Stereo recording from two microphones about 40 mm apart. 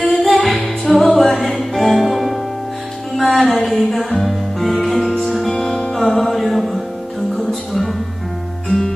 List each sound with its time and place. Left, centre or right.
0.1 s music: centre
5.8 s music: left
6.0 s music: centre